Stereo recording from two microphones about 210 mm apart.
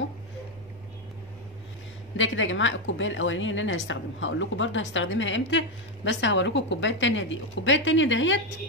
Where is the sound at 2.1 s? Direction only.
65° left (ahead or behind).